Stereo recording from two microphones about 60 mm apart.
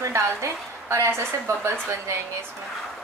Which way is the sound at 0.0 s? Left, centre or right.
Right.